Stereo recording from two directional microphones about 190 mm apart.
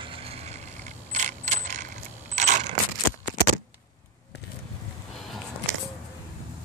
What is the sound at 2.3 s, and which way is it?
Coin, 40° right (ahead or behind).